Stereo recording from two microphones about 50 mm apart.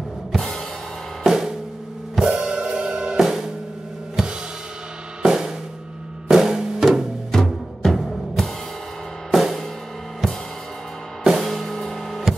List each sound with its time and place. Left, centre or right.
0.3 s music: centre
1.2 s drum kit: centre
2.1 s drum kit: centre
5.2 s drum kit: centre
6.2 s music: centre
11.2 s music: centre